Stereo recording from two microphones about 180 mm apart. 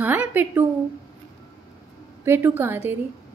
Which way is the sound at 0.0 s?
10° right (ahead or behind).